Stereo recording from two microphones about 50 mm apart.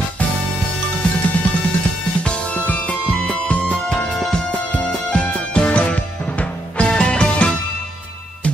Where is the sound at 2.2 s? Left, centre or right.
Left.